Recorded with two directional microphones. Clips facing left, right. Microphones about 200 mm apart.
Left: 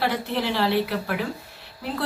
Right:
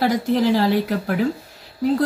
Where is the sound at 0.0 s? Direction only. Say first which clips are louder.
Right 7 dB; 40° right (ahead or behind).